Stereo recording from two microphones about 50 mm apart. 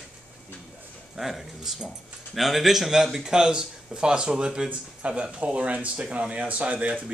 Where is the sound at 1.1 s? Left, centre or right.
Centre.